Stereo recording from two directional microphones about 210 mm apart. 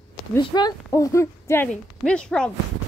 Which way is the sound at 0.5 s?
20° left (ahead or behind).